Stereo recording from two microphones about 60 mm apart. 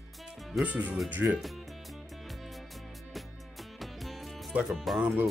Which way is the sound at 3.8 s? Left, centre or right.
Centre.